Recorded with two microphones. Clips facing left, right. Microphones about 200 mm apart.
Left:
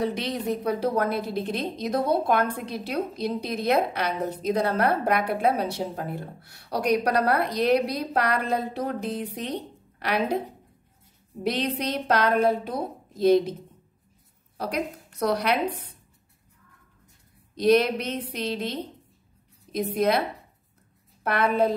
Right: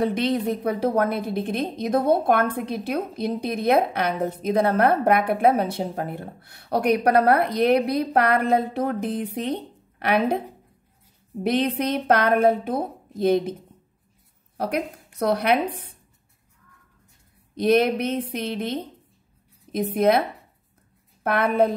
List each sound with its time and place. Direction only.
0.0 s a woman's voice: 55° right (ahead or behind)
11.4 s a woman's voice: 55° right (ahead or behind)
15.1 s a woman's voice: 55° right (ahead or behind)
17.6 s a woman's voice: 55° right (ahead or behind)